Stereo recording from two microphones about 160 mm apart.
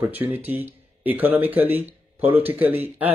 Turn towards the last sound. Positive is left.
turn(degrees=-10)  # may be behind; listen again after turning